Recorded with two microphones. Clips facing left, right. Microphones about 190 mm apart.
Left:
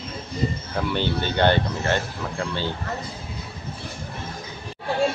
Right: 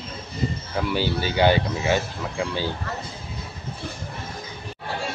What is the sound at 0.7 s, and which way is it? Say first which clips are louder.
Speech: right 2 dB; 5° right (ahead or behind).